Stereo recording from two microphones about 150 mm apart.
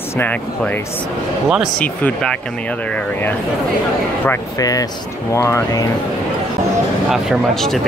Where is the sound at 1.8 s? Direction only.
5° left (ahead or behind).